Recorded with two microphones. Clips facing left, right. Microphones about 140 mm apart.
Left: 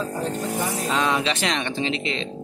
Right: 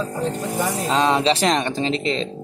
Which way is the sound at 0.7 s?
30° right (ahead or behind).